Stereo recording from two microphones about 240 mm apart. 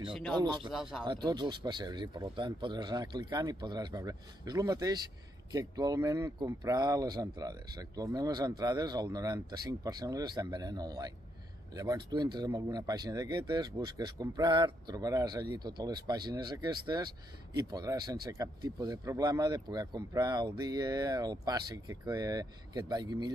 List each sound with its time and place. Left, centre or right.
0.4 s speech: centre
0.7 s speech: centre
1.0 s speech: centre